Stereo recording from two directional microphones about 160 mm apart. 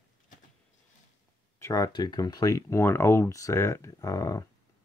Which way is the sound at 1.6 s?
20° left (ahead or behind).